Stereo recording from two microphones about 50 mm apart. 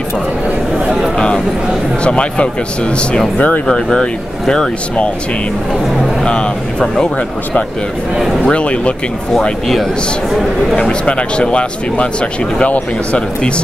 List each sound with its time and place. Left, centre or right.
1.1 s a sound: centre
2.0 s speech: left
3.6 s speech: centre
6.2 s speech: left
8.4 s speech: left
10.8 s speech: left